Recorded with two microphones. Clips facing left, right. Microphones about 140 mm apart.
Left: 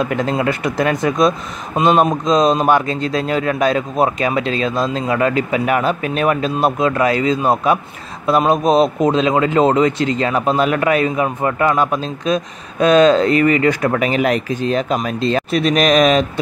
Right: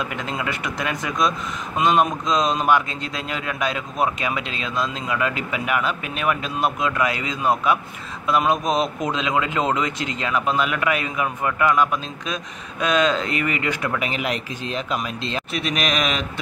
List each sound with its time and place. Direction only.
0.0 s speech: 40° left (ahead or behind)